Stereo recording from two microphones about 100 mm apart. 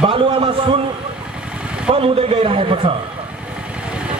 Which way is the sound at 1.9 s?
70° right (ahead or behind).